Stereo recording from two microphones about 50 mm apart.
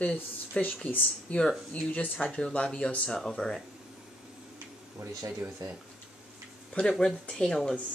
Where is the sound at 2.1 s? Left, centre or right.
Centre.